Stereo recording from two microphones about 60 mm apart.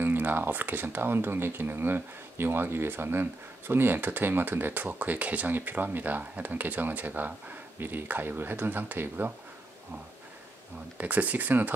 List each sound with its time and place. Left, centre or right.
0.0 s speech: right
11.0 s speech: right